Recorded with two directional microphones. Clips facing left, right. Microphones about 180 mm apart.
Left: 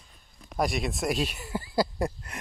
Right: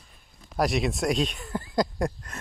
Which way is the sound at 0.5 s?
Centre (ahead or behind).